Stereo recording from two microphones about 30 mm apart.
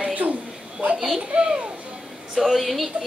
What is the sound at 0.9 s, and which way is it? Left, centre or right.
Female singing, centre.